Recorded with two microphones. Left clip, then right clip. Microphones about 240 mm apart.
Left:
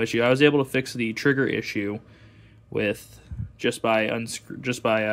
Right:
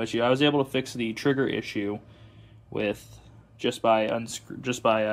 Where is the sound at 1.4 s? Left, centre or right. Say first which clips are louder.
Left 3 dB; left.